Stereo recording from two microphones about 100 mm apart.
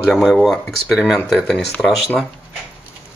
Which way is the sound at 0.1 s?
Centre (ahead or behind).